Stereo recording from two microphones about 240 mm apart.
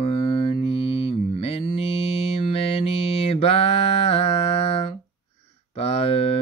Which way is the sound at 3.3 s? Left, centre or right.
Left.